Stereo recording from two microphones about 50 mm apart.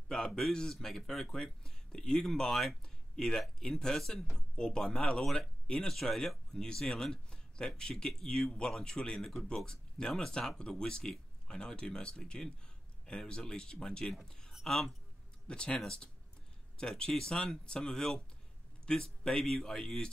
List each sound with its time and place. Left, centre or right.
0.1 s speech: centre
14.2 s a sound: centre
14.6 s a woman's voice: centre
15.4 s a man's voice: centre